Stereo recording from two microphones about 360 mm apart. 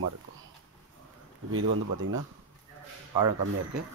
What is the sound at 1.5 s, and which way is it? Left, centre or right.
Speech, right.